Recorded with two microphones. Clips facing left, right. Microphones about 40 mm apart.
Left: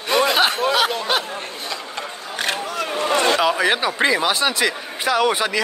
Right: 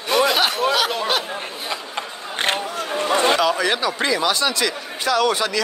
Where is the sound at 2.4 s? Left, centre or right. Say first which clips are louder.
Right 2 dB; right.